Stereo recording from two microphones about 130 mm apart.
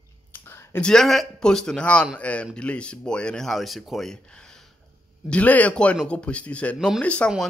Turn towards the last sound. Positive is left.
turn(degrees=10)  # may be behind; listen again after turning